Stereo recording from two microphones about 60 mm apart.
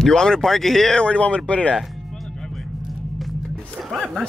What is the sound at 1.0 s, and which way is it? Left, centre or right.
Speech, centre.